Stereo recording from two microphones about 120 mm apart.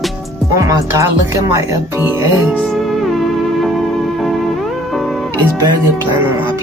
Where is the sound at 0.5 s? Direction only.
25° right (ahead or behind).